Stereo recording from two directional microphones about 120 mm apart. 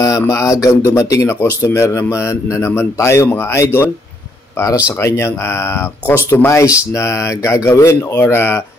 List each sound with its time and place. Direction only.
0.0 s speech: 25° left (ahead or behind)
4.9 s speech: 20° left (ahead or behind)